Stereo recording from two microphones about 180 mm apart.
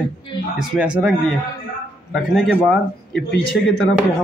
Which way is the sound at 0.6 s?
5° right (ahead or behind).